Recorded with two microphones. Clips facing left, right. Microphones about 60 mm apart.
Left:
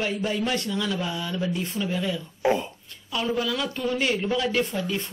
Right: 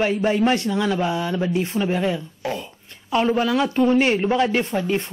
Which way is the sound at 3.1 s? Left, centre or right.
Right.